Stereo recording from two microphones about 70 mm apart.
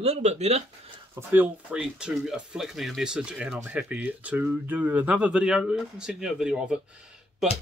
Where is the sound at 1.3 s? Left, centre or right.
Right.